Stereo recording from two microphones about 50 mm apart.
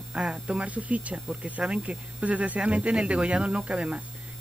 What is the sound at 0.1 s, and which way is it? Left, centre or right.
Speech, right.